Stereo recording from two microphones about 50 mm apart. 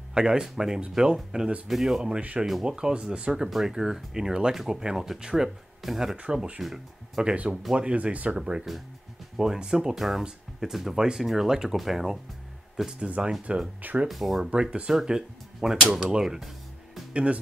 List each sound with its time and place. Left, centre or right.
0.1 s speech: centre
2.1 s speech: right
3.4 s speech: centre
6.1 s speech: centre
6.6 s speech: centre
7.2 s speech: right
8.4 s speech: centre
13.0 s speech: right
14.0 s speech: centre
14.5 s speech: right